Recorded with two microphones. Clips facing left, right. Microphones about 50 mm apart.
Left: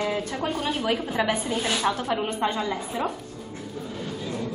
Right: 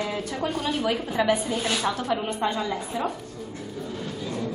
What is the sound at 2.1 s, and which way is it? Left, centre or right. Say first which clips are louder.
A woman's voice: even; left.